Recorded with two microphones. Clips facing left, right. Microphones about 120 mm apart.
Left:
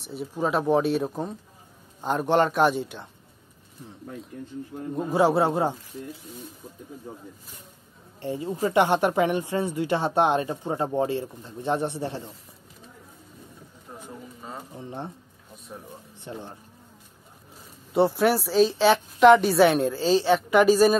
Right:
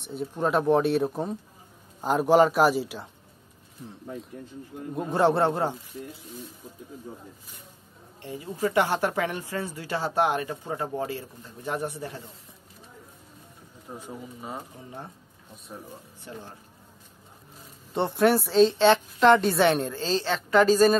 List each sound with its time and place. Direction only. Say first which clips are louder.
0.0 s a woman's voice: even; 5° left (ahead or behind)
8.2 s speech: left 2 dB; 30° left (ahead or behind)
13.9 s speech: right 2 dB; 10° right (ahead or behind)
16.2 s speech: left 5 dB; 20° left (ahead or behind)
17.9 s a woman's voice: left 1 dB; 5° left (ahead or behind)